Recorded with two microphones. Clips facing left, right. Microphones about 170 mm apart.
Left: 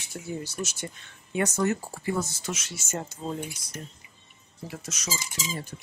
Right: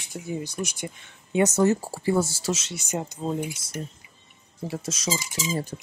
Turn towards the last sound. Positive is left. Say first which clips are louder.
# right 6 dB
turn(degrees=-30)  # may be behind; listen again after turning